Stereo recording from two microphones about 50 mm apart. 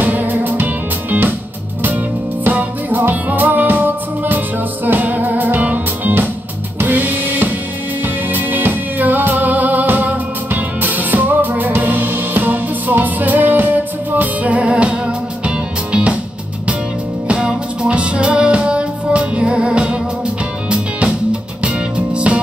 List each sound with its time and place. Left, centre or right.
0.0 s music: right
2.4 s music: right
17.4 s music: centre